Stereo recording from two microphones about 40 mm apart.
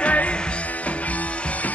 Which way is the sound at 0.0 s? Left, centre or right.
Left.